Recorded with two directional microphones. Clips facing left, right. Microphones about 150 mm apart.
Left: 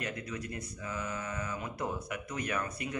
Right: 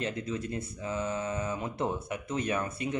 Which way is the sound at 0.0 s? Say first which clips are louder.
Right 5 dB; 25° right (ahead or behind).